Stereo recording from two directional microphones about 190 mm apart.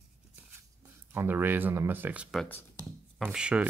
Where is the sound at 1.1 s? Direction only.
10° right (ahead or behind).